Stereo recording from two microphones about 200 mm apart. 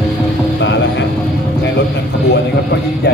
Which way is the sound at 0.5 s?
65° left (ahead or behind).